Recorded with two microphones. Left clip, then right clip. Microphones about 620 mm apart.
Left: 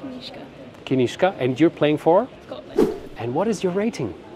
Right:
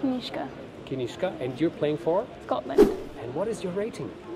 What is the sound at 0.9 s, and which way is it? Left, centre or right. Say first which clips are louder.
Speech: left 10 dB; left.